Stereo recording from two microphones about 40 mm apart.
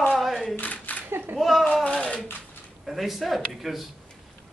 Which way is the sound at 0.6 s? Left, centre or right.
Left.